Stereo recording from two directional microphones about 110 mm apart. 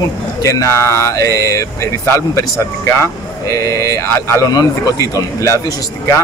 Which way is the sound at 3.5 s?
30° left (ahead or behind).